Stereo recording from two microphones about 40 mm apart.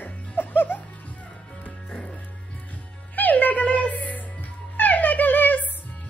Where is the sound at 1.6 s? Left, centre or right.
Left.